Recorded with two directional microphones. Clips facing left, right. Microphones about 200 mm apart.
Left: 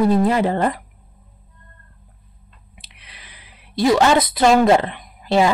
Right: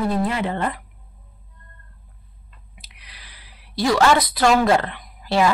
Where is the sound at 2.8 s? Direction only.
25° left (ahead or behind).